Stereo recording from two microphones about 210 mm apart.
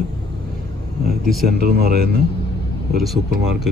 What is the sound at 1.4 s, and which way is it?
Speech, 50° right (ahead or behind).